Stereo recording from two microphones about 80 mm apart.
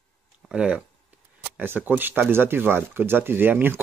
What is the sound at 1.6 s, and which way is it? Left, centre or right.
Speech, right.